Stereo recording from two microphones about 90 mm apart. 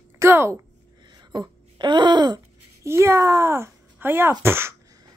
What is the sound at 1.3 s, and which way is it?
Speech, 55° right (ahead or behind).